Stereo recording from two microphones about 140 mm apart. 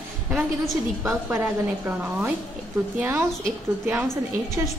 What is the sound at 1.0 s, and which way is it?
A woman's voice, 15° right (ahead or behind).